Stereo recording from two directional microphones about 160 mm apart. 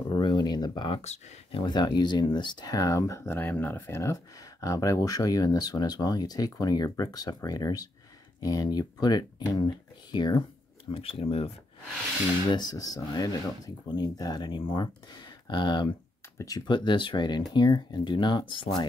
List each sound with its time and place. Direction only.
0.1 s speech: 25° left (ahead or behind)
12.4 s speech: 25° left (ahead or behind)